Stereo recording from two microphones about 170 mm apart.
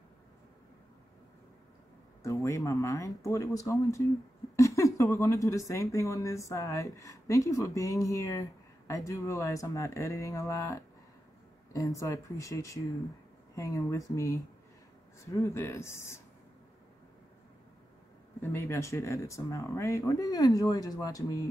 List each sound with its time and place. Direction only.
2.4 s a woman's voice: 20° left (ahead or behind)
18.4 s speech: 15° left (ahead or behind)